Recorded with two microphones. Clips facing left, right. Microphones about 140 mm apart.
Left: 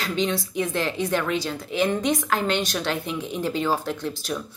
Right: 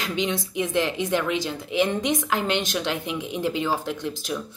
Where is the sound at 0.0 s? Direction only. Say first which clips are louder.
Left 1 dB; 15° right (ahead or behind).